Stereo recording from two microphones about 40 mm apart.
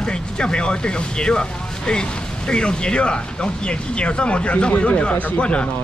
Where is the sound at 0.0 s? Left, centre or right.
Left.